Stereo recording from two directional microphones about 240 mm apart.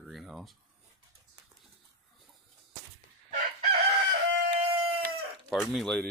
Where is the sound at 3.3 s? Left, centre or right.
Right.